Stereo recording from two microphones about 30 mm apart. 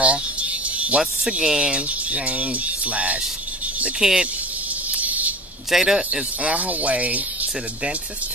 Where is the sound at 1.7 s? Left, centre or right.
Right.